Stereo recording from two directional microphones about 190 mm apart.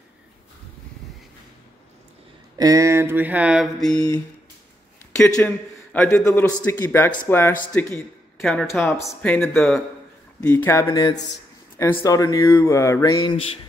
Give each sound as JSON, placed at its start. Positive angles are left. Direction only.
{"t": 2.5, "sound": "speech", "side_deg": -20}
{"t": 5.2, "sound": "mantra", "side_deg": 10}
{"t": 7.7, "sound": "speech", "side_deg": 5}
{"t": 8.8, "sound": "speech", "side_deg": 15}
{"t": 10.4, "sound": "mantra", "side_deg": 10}